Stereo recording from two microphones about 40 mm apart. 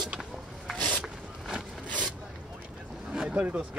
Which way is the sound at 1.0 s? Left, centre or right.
Centre.